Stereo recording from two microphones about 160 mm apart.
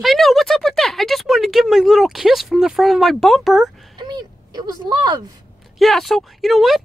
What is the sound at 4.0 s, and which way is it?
Speech, 25° right (ahead or behind).